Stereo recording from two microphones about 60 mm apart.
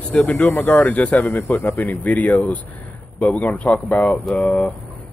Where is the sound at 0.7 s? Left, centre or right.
Left.